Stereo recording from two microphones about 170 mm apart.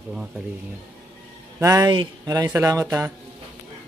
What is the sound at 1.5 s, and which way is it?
Speech, 15° right (ahead or behind).